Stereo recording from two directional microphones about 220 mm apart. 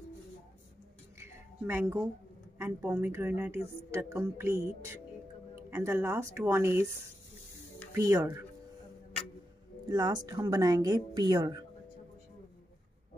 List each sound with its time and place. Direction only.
1.2 s a sound: 10° right (ahead or behind)
2.6 s a woman's voice: 10° right (ahead or behind)
7.9 s a woman's voice: 15° right (ahead or behind)
9.8 s a woman's voice: 20° right (ahead or behind)